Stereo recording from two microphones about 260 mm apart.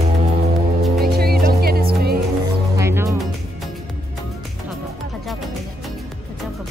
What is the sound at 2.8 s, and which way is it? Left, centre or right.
Music, centre.